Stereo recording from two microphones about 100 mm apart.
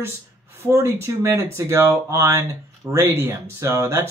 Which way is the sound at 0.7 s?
30° right (ahead or behind).